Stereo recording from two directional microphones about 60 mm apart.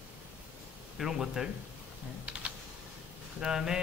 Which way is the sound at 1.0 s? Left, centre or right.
Centre.